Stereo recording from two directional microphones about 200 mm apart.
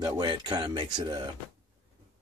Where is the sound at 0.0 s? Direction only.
20° right (ahead or behind).